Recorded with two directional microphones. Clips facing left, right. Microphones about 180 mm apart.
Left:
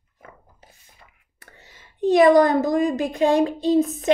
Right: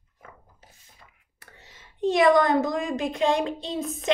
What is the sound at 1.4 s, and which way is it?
A woman's voice, 45° left (ahead or behind).